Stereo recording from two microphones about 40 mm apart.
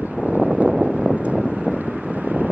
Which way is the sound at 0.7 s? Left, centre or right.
Centre.